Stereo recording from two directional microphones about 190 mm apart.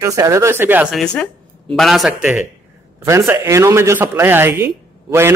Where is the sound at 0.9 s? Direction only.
5° left (ahead or behind).